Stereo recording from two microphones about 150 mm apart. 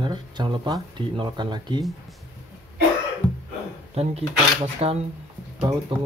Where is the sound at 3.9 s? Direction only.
45° right (ahead or behind).